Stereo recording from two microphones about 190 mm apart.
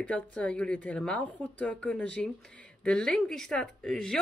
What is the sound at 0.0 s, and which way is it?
A woman's voice, 5° left (ahead or behind).